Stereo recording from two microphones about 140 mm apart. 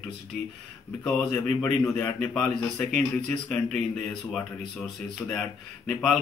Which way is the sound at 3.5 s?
10° left (ahead or behind).